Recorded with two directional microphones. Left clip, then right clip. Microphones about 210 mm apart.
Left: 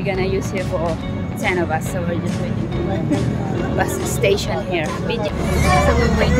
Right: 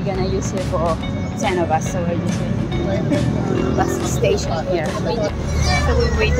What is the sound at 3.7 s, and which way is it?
Speech, 20° left (ahead or behind).